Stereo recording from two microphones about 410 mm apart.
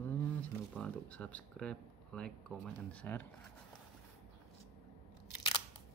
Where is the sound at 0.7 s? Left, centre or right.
Centre.